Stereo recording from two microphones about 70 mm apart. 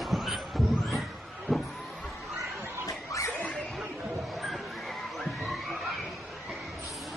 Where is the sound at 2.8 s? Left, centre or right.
Left.